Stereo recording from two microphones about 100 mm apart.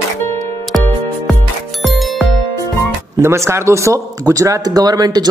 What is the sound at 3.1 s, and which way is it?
A man's voice, 25° right (ahead or behind).